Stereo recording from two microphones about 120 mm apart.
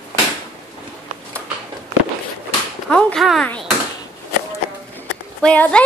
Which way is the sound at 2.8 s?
5° left (ahead or behind).